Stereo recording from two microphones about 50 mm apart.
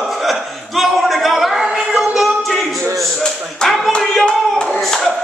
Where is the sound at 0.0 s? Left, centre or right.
Centre.